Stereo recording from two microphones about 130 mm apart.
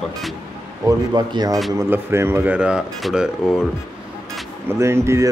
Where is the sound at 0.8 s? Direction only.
30° right (ahead or behind).